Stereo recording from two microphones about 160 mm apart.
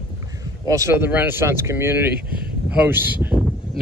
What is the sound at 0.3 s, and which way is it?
Speech, 20° right (ahead or behind).